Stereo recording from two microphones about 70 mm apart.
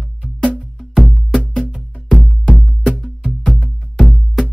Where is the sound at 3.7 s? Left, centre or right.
Centre.